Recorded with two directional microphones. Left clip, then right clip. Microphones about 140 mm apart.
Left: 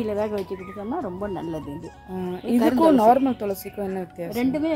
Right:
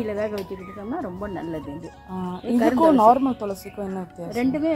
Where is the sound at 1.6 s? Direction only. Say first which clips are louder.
Even; centre (ahead or behind).